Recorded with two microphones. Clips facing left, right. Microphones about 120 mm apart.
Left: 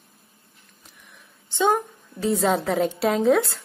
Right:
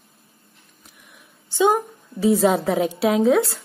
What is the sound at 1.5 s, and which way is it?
A woman's voice, 5° right (ahead or behind).